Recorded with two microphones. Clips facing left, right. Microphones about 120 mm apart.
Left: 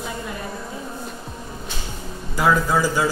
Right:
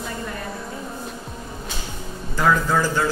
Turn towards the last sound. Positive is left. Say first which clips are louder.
# left 1 dB
turn(degrees=10)  # may be behind; listen again after turning